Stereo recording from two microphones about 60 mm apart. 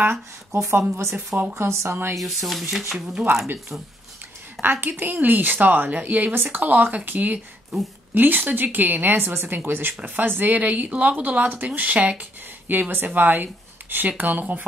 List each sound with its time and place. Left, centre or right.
0.0 s speech: right
1.1 s speech: right
1.5 s speech: right
2.1 s speech: centre
4.6 s speech: right